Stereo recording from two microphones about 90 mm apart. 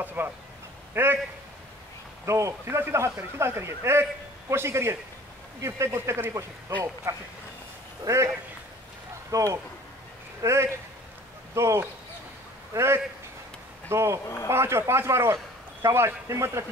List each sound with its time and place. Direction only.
0.0 s speech: 20° right (ahead or behind)
2.2 s a man's voice: 35° right (ahead or behind)
9.3 s a man's voice: 40° right (ahead or behind)
14.2 s speech: 35° left (ahead or behind)
14.5 s speech: 30° right (ahead or behind)